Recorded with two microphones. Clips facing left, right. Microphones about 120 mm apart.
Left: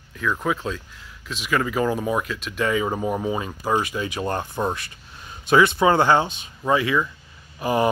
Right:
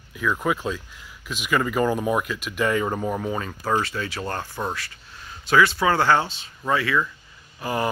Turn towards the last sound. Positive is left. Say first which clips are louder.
# left 5 dB
turn(degrees=20)  # may be behind; listen again after turning